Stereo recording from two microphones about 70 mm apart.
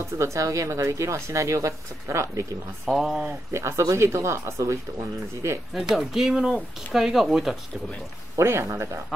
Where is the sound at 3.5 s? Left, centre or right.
Right.